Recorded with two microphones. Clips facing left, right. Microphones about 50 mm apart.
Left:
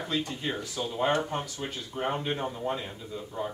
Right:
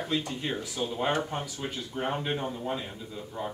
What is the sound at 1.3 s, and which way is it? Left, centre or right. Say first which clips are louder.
Speech: left 1 dB; centre.